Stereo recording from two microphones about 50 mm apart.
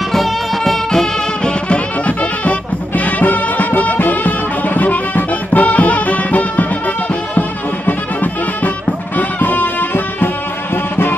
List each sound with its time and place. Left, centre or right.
0.1 s music: centre
1.4 s music: left